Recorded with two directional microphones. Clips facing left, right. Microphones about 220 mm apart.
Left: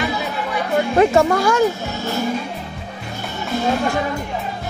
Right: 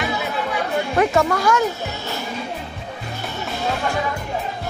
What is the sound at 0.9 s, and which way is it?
Speech, 30° left (ahead or behind).